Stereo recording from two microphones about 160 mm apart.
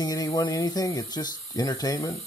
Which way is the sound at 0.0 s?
25° left (ahead or behind).